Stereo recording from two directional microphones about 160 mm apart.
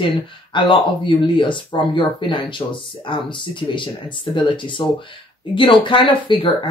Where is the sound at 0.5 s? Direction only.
30° left (ahead or behind).